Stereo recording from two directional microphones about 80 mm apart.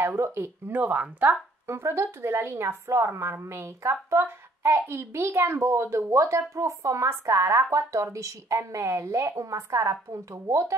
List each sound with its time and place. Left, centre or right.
0.0 s speech: right
1.7 s a woman's voice: right